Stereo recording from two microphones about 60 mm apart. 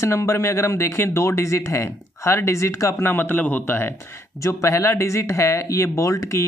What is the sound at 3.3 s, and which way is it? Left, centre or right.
Speech, left.